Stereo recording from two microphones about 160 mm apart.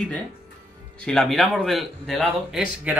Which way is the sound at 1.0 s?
5° left (ahead or behind).